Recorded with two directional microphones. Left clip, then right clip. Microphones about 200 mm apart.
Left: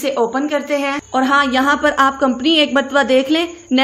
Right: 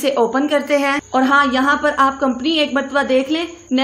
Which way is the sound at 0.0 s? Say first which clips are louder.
Right 1 dB; 5° right (ahead or behind).